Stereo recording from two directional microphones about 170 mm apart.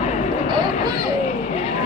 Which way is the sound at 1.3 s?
40° left (ahead or behind).